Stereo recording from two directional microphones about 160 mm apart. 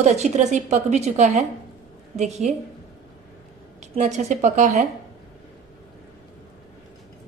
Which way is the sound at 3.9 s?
45° right (ahead or behind).